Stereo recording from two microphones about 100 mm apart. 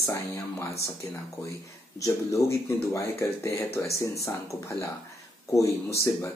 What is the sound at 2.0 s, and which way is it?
Speech, 30° left (ahead or behind).